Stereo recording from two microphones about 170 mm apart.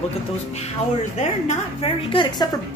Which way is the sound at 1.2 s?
45° left (ahead or behind).